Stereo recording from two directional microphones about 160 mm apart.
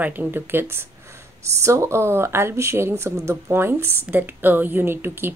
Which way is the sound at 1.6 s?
15° right (ahead or behind).